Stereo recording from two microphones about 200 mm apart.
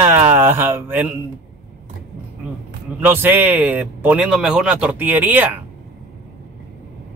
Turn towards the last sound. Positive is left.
turn(degrees=-10)  # may be behind; listen again after turning